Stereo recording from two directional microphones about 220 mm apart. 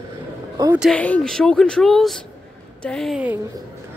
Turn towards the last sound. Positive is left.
turn(degrees=-5)  # may be behind; listen again after turning